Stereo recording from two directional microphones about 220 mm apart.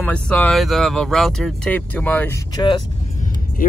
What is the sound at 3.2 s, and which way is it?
Vehicle, 40° left (ahead or behind).